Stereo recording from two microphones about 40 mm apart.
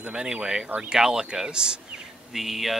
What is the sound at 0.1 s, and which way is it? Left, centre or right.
Speech, right.